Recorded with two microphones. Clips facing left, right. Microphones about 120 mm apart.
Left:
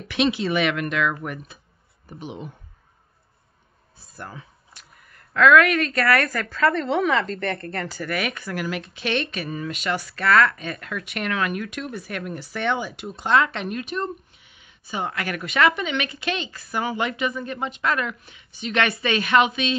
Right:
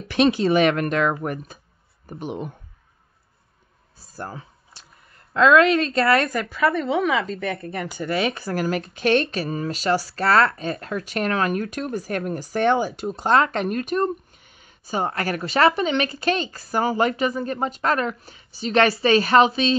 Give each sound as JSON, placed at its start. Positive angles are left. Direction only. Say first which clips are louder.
{"t": 0.1, "sound": "speech", "louder": "right 4 dB", "side_deg": -40}
{"t": 4.0, "sound": "speech", "louder": "right 4 dB", "side_deg": -35}